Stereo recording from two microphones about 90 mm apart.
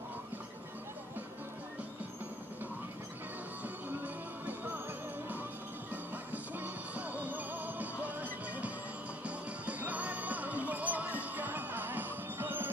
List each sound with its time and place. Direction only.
3.6 s music: 20° right (ahead or behind)
6.3 s music: 20° right (ahead or behind)